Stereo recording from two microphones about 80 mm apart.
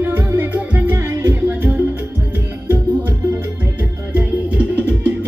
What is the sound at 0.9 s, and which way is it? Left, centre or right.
Music, right.